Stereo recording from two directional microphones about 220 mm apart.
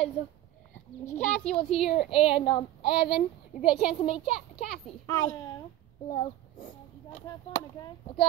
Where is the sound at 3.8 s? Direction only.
25° left (ahead or behind).